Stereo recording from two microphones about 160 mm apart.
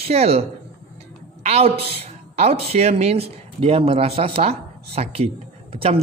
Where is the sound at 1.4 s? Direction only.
40° right (ahead or behind).